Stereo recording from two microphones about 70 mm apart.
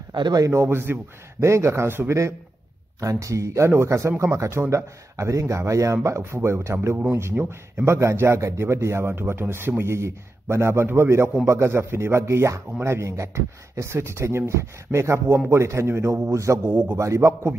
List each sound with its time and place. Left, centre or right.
0.1 s a man's voice: right
0.5 s speech: right
3.0 s speech: right
16.6 s speech: right
17.0 s speech: right